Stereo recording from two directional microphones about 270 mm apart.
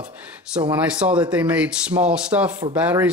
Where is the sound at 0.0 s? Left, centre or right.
Centre.